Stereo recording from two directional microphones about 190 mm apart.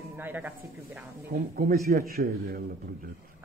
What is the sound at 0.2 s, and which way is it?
Speech, 10° right (ahead or behind).